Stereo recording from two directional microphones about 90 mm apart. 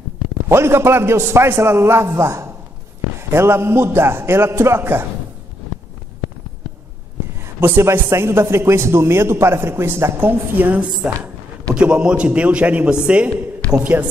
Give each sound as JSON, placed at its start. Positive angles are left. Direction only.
{"t": 0.5, "sound": "a man's voice", "side_deg": -30}
{"t": 7.3, "sound": "a man's voice", "side_deg": -25}